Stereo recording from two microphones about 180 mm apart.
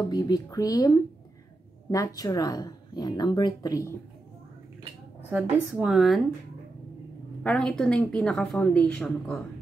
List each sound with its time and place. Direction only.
0.1 s a woman's voice: 20° left (ahead or behind)
5.3 s a woman's voice: 5° right (ahead or behind)
7.4 s a woman's voice: 5° left (ahead or behind)